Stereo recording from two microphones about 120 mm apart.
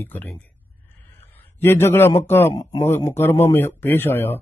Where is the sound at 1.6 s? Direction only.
20° left (ahead or behind).